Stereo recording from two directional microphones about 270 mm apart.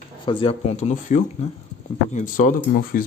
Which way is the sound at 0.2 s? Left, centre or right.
Centre.